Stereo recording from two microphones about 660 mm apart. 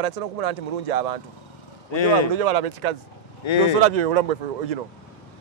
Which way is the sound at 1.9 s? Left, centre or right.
Left.